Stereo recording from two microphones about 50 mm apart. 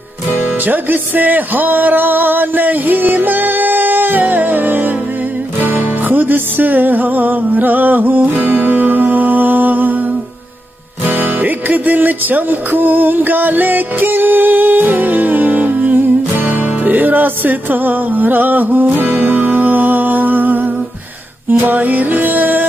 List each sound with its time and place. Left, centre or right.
0.7 s music: right
11.1 s music: right